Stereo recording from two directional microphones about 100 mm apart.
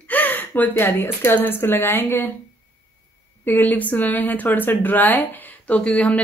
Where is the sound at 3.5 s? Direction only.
15° left (ahead or behind).